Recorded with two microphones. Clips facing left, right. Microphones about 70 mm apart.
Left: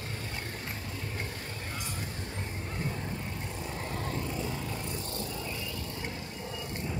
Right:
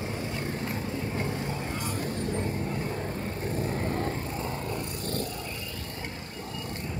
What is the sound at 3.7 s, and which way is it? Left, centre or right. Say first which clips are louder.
Vehicle: right 6 dB; right.